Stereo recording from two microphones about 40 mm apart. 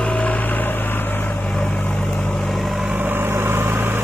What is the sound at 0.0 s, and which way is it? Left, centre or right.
Vehicle, left.